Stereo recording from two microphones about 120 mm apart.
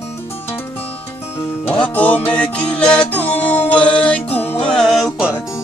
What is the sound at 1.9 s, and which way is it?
Music, 15° left (ahead or behind).